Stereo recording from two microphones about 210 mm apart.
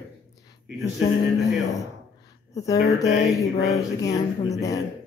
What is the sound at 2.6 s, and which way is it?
Speech, 15° left (ahead or behind).